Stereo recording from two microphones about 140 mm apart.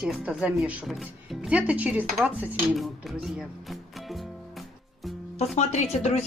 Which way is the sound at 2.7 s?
Centre (ahead or behind).